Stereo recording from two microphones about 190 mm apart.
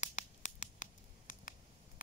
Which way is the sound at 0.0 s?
40° left (ahead or behind).